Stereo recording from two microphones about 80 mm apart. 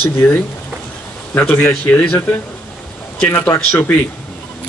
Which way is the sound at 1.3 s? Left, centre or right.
Left.